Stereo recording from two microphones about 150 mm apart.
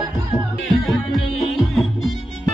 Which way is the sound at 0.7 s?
Centre (ahead or behind).